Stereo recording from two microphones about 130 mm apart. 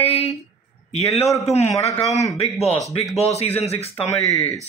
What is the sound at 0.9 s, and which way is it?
A man's voice, 55° left (ahead or behind).